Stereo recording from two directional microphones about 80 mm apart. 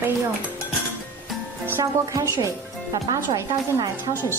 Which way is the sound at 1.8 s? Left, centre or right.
Right.